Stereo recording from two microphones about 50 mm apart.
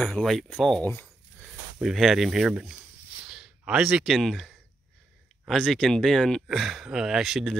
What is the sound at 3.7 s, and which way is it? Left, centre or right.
Speech, centre.